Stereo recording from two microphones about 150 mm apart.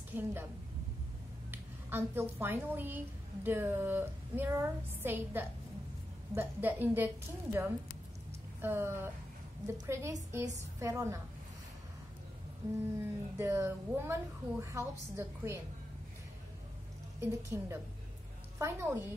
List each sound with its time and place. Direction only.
0.1 s a woman's voice: 15° right (ahead or behind)
1.5 s a woman's voice: 15° right (ahead or behind)
8.5 s a woman's voice: 15° right (ahead or behind)
13.0 s a woman's voice: 15° right (ahead or behind)
17.2 s a woman's voice: 20° right (ahead or behind)